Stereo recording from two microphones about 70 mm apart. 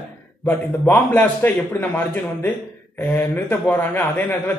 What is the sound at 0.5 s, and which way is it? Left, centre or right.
A man's voice, left.